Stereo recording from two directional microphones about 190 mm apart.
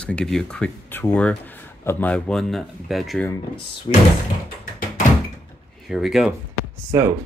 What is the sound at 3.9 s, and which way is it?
Speech, 30° left (ahead or behind).